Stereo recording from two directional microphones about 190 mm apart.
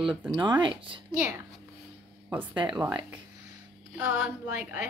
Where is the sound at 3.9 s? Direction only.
5° right (ahead or behind).